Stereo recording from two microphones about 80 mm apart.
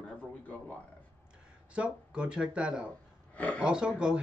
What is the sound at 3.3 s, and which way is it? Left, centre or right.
Speech, centre.